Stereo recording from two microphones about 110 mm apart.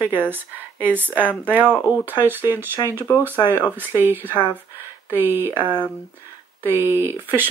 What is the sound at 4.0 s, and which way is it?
Speech, 20° right (ahead or behind).